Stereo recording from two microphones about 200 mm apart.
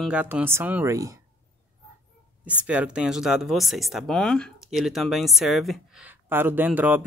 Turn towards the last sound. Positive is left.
turn(degrees=-10)  # may be behind; listen again after turning